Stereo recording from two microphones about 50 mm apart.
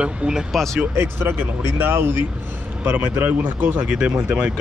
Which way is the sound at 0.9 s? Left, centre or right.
Right.